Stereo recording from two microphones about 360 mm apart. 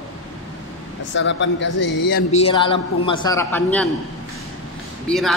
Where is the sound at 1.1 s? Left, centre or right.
Left.